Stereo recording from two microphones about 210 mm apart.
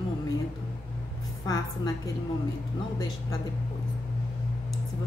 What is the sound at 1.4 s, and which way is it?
Speech, 15° left (ahead or behind).